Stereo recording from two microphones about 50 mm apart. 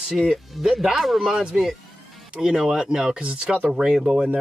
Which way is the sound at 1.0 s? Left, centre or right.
Centre.